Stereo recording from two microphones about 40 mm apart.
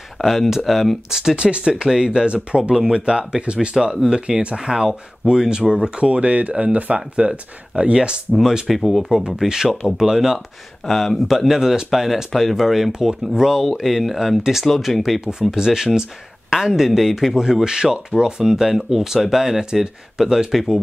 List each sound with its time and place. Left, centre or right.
0.2 s speech: centre
1.3 s speech: right
2.3 s speech: right
2.7 s speech: centre
8.3 s speech: centre
9.5 s speech: centre
10.9 s speech: centre
11.3 s speech: centre